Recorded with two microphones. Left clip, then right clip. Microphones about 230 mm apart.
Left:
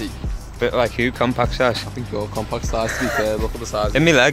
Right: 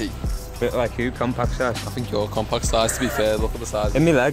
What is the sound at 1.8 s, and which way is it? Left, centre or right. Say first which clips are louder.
Speech: right 1 dB; centre.